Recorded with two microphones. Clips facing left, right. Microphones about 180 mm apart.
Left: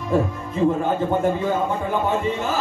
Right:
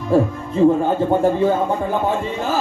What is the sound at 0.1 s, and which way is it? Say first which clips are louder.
Speech: right 5 dB; 35° right (ahead or behind).